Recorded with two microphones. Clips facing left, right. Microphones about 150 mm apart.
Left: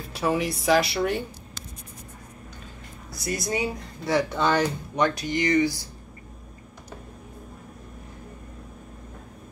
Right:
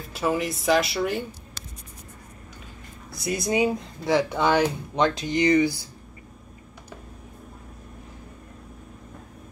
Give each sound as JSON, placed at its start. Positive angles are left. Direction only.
{"t": 0.0, "sound": "speech", "side_deg": 0}
{"t": 3.3, "sound": "speech", "side_deg": -20}